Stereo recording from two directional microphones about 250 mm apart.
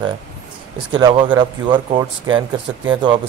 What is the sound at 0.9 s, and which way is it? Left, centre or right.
Speech, centre.